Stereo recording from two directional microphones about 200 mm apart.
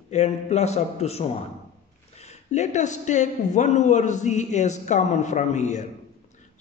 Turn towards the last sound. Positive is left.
turn(degrees=35)  # may be behind; listen again after turning